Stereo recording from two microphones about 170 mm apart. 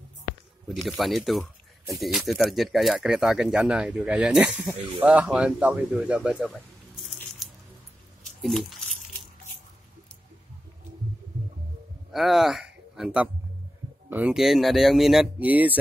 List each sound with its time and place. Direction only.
0.7 s a man's voice: centre (ahead or behind)
7.4 s squish: centre (ahead or behind)
8.4 s speech: centre (ahead or behind)
12.1 s a man's voice: centre (ahead or behind)